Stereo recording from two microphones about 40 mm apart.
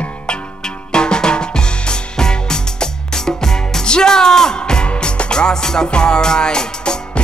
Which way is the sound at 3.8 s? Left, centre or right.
Centre.